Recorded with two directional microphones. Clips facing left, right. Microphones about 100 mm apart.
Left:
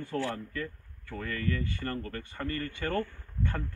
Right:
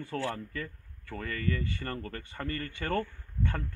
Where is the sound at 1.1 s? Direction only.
25° right (ahead or behind).